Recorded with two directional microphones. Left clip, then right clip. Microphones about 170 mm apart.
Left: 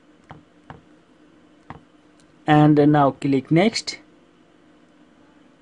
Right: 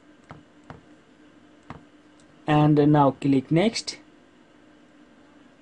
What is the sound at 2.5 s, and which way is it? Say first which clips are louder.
Speech: left 4 dB; 25° left (ahead or behind).